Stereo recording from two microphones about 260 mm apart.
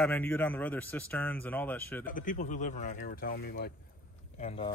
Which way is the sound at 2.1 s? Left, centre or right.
Left.